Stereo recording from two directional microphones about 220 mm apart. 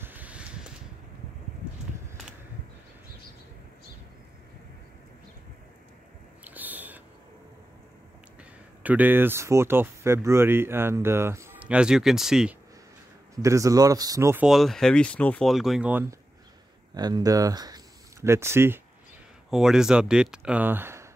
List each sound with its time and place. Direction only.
0.0 s a sound: 10° right (ahead or behind)
6.4 s owl: 5° right (ahead or behind)
8.8 s speech: 5° right (ahead or behind)
13.4 s speech: 15° right (ahead or behind)